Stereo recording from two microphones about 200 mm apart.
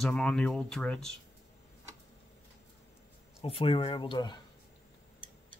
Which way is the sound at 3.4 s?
30° left (ahead or behind).